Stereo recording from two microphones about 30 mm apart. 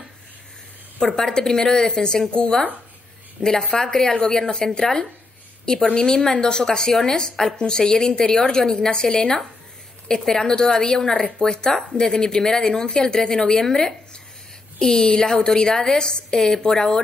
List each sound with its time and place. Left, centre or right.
1.0 s a woman's voice: left
3.4 s a woman's voice: centre
5.7 s a woman's voice: left
14.8 s a woman's voice: left